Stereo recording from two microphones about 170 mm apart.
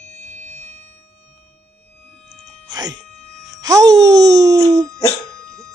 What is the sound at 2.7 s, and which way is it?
Music, 25° right (ahead or behind).